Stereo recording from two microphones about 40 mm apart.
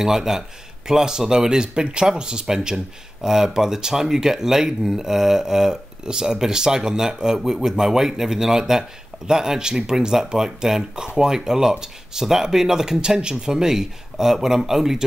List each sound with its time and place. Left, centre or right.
0.0 s speech: centre